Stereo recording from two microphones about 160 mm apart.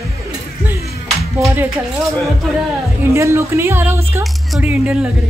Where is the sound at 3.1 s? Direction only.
15° right (ahead or behind).